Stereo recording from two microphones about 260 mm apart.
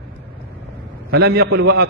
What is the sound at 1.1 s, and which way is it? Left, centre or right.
Speech, right.